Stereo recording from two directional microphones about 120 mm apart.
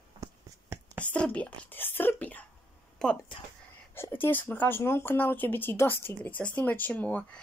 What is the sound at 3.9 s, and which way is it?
Speech, 20° left (ahead or behind).